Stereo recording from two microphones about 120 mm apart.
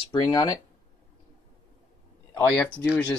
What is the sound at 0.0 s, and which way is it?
Speech, 40° left (ahead or behind).